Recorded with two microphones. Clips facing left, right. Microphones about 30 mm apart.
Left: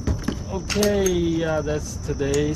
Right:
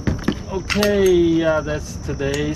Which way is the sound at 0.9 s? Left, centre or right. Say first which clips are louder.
Right 6 dB; centre.